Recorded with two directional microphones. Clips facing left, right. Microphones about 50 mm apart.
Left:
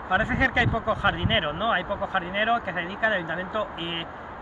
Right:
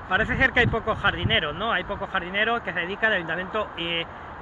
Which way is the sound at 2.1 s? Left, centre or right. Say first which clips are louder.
Even; right.